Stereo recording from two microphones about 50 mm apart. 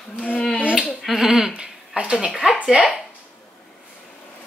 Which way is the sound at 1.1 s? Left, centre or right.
Centre.